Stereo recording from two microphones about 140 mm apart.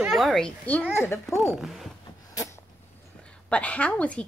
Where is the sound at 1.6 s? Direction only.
Centre (ahead or behind).